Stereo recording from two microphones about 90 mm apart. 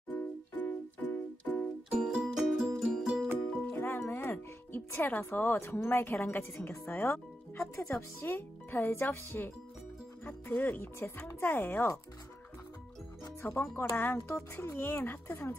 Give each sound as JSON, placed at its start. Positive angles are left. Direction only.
{"t": 0.1, "sound": "music", "side_deg": 20}
{"t": 1.9, "sound": "music", "side_deg": -5}
{"t": 3.8, "sound": "speech", "side_deg": 25}
{"t": 13.2, "sound": "speech", "side_deg": 30}